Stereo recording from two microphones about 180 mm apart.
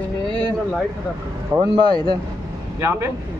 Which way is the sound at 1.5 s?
25° right (ahead or behind).